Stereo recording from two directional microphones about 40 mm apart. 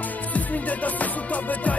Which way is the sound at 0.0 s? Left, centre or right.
Left.